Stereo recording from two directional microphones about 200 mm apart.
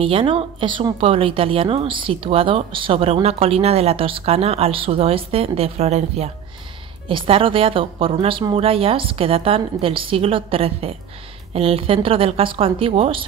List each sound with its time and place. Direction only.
0.0 s a woman's voice: 25° right (ahead or behind)